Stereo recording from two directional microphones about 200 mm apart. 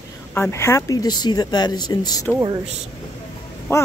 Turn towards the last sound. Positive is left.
turn(degrees=15)  # may be behind; listen again after turning